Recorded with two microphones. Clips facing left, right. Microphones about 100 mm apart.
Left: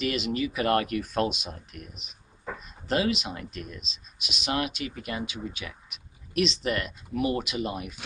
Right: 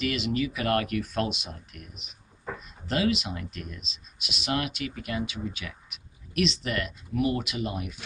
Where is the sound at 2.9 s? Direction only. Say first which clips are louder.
Even; 30° left (ahead or behind).